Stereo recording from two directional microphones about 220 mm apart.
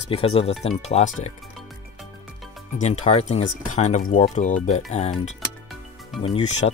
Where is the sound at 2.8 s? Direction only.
30° left (ahead or behind).